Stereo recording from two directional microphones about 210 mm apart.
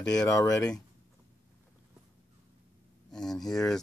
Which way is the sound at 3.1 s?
Centre (ahead or behind).